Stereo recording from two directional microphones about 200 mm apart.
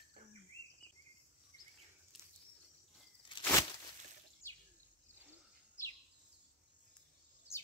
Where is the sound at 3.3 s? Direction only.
25° left (ahead or behind).